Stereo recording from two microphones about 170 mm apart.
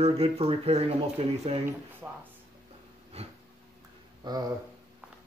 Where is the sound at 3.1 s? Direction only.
40° right (ahead or behind).